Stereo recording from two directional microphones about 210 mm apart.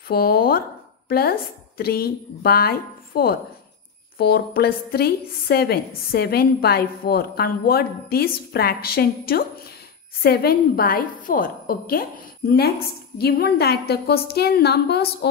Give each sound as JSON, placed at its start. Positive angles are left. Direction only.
{"t": 0.1, "sound": "a woman's voice", "side_deg": 45}